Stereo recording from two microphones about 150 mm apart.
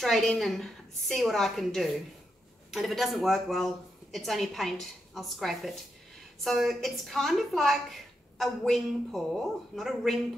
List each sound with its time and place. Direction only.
0.0 s a woman's voice: centre (ahead or behind)